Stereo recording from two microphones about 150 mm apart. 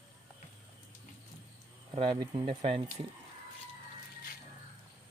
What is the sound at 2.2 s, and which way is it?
Speech, 30° right (ahead or behind).